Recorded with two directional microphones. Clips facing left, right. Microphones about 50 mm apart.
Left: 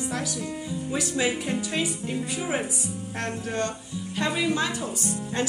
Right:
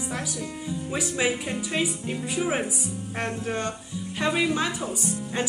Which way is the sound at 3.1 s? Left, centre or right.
Centre.